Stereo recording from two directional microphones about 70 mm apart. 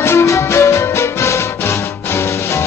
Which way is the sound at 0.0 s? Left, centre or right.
Left.